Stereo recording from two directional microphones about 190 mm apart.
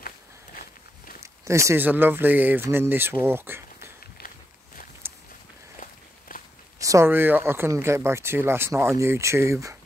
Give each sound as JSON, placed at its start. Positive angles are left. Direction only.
{"t": 1.2, "sound": "speech", "side_deg": -15}
{"t": 5.8, "sound": "walk", "side_deg": 45}
{"t": 6.8, "sound": "speech", "side_deg": -15}